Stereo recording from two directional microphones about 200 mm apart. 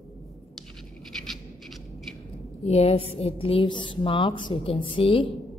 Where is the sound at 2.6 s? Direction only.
30° left (ahead or behind).